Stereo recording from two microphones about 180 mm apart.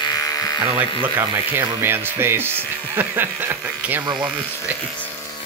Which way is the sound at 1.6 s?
10° right (ahead or behind).